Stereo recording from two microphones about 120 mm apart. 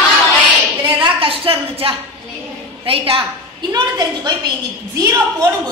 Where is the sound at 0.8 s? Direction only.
45° right (ahead or behind).